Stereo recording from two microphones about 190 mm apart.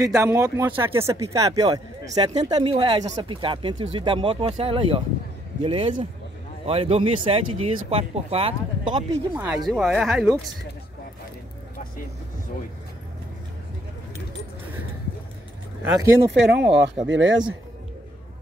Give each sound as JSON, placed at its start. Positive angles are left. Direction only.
{"t": 0.0, "sound": "speech", "side_deg": -15}
{"t": 9.3, "sound": "speech", "side_deg": -5}
{"t": 15.8, "sound": "speech", "side_deg": -15}
{"t": 16.3, "sound": "speech", "side_deg": -65}